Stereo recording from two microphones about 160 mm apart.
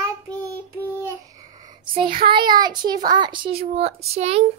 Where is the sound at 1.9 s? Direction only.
30° right (ahead or behind).